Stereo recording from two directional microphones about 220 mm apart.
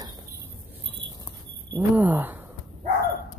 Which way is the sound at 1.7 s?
10° right (ahead or behind).